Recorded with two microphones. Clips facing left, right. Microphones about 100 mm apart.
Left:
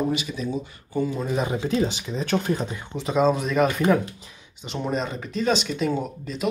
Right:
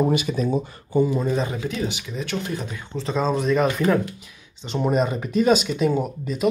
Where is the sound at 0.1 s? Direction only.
50° right (ahead or behind).